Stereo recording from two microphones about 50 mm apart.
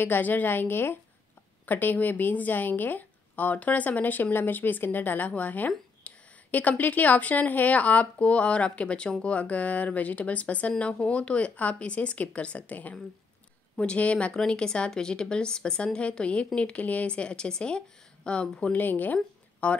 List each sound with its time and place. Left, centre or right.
0.0 s a woman's voice: left
1.7 s a woman's voice: left
18.8 s speech: left